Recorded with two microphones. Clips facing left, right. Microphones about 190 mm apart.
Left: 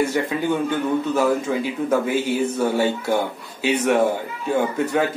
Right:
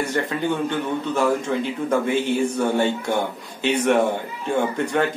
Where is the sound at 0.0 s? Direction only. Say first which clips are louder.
Left 2 dB; 10° left (ahead or behind).